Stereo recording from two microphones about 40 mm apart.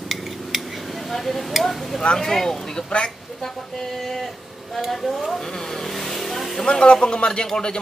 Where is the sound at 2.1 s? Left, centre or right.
Centre.